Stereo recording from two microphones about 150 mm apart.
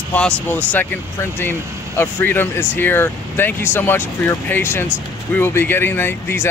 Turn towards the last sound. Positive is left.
turn(degrees=15)  # may be behind; listen again after turning